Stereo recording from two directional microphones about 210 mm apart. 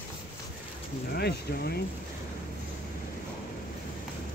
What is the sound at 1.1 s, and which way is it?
Speech, 50° left (ahead or behind).